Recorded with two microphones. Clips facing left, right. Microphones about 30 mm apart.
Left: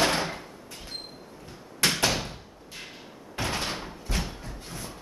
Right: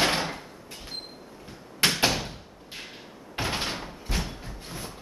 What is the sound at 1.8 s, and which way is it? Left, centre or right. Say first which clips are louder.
Door: right 1 dB; right.